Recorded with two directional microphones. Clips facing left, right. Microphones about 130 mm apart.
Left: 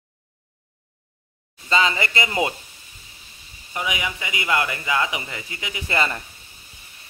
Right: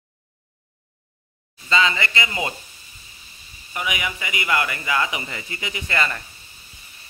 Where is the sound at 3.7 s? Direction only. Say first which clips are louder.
Even; 25° left (ahead or behind).